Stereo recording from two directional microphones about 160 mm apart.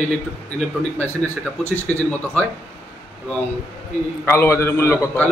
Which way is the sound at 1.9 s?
10° left (ahead or behind).